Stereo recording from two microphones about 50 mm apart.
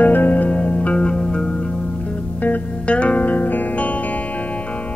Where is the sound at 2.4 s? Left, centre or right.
Left.